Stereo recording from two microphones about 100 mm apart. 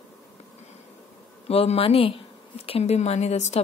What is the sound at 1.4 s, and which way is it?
Speech, 85° left.